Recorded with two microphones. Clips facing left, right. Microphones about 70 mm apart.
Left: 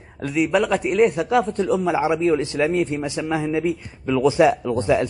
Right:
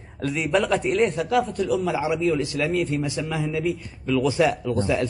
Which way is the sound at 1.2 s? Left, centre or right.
Left.